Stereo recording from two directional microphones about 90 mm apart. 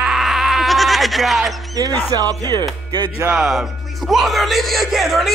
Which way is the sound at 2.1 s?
50° right (ahead or behind).